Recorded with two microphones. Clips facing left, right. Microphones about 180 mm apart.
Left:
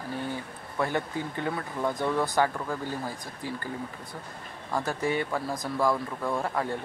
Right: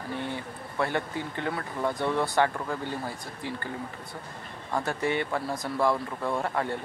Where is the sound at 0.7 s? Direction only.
15° left (ahead or behind).